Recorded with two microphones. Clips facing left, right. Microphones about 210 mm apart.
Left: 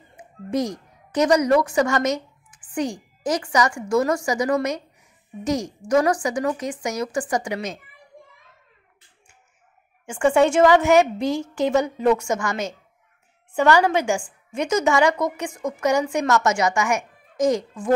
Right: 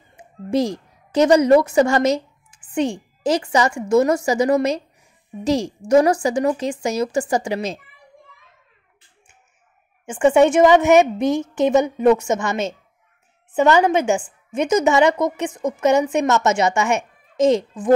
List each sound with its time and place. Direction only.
0.2 s a woman's voice: 30° right (ahead or behind)
10.0 s a woman's voice: 20° right (ahead or behind)